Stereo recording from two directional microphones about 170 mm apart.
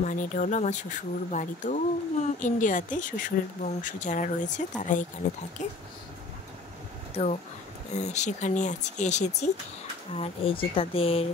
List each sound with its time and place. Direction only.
0.0 s a woman's voice: 50° left (ahead or behind)
7.9 s a woman's voice: 40° left (ahead or behind)